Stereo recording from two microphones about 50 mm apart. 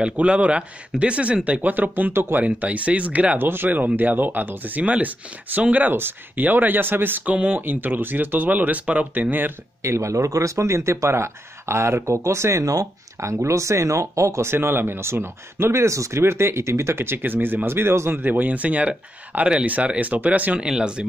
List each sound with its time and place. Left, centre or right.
0.0 s speech: right
3.3 s speech: right
9.8 s speech: right
18.2 s speech: right
20.6 s speech: centre